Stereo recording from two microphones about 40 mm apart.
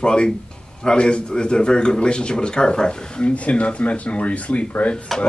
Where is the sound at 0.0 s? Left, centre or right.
Left.